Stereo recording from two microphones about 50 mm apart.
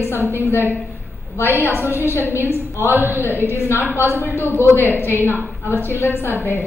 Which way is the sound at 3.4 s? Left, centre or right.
Left.